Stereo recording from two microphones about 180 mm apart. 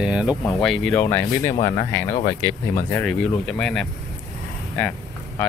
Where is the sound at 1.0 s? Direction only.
15° left (ahead or behind).